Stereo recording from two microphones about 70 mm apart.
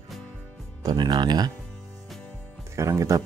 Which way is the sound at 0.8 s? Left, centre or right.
Right.